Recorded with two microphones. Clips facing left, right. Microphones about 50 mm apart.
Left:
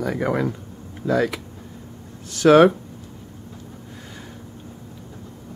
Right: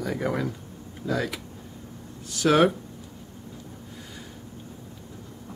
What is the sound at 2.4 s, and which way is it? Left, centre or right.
Speech, left.